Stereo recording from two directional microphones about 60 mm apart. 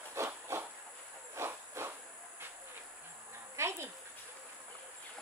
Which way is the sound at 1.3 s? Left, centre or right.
Right.